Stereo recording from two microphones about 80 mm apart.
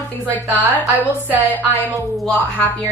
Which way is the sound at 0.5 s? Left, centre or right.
Left.